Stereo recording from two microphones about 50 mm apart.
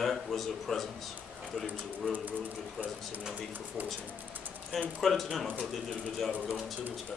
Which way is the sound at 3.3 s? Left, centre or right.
Right.